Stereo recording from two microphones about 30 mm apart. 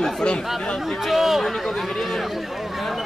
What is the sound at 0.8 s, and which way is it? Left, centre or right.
Speech, centre.